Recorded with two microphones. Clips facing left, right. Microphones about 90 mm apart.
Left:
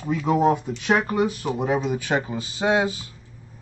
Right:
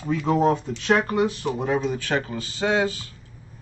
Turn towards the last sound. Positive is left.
turn(degrees=20)  # may be behind; listen again after turning